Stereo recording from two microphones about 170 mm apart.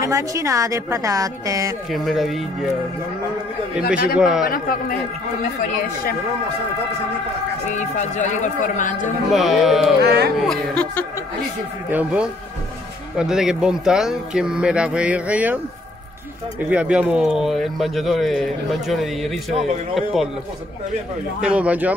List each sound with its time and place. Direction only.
0.0 s a woman's voice: 20° right (ahead or behind)
1.9 s speech: centre (ahead or behind)
4.2 s speech: 5° right (ahead or behind)
4.5 s a man's voice: 60° left (ahead or behind)
7.7 s speech: 45° left (ahead or behind)
9.3 s speech: centre (ahead or behind)
10.0 s speech: 65° right (ahead or behind)
10.3 s speech: centre (ahead or behind)
11.9 s speech: 5° right (ahead or behind)
21.4 s speech: 5° right (ahead or behind)